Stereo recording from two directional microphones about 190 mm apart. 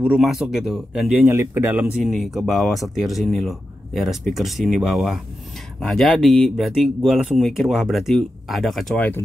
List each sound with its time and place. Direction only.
0.0 s speech: 5° right (ahead or behind)